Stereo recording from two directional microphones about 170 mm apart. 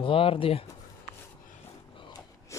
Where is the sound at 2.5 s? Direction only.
15° left (ahead or behind).